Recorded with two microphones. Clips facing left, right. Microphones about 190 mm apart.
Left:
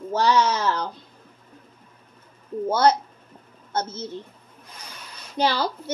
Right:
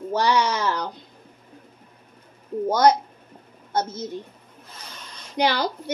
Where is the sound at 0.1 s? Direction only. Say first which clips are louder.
Left 1 dB; 15° right (ahead or behind).